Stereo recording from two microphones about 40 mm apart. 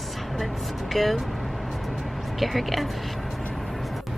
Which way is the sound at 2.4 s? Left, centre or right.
Centre.